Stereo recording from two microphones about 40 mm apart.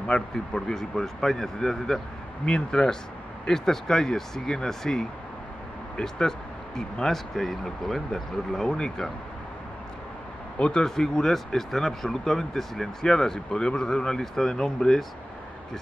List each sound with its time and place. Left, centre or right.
0.0 s speech: centre
10.6 s speech: left